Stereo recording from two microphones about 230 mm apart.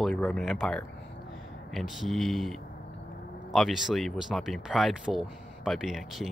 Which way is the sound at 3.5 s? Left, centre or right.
Centre.